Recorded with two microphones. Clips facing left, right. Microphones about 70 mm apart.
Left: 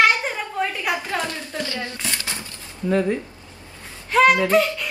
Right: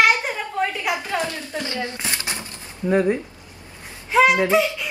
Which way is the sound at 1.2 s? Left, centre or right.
Right.